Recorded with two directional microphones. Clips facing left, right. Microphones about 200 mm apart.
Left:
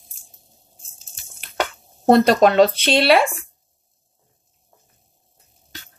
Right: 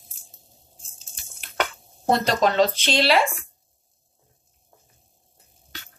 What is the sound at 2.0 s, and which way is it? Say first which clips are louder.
Speech: left 8 dB; 60° left (ahead or behind).